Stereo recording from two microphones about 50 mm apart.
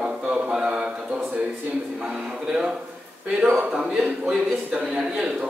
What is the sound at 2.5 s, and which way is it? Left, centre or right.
A man's voice, centre.